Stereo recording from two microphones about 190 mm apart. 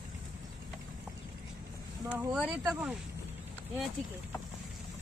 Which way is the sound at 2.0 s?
5° right (ahead or behind).